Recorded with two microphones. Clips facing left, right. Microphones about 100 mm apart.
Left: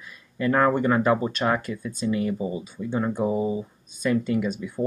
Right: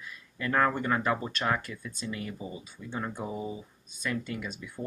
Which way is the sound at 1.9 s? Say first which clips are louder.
Left 13 dB; 10° left (ahead or behind).